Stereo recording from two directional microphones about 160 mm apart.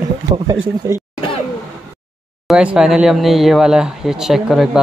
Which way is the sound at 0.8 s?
20° right (ahead or behind).